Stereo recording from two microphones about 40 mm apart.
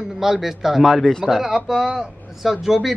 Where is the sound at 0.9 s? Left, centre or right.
Centre.